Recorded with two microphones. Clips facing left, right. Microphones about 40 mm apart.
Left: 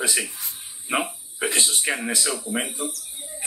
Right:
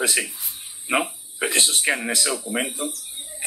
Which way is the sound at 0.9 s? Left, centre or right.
Centre.